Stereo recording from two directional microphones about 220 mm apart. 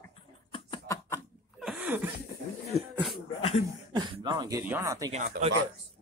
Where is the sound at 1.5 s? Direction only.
5° right (ahead or behind).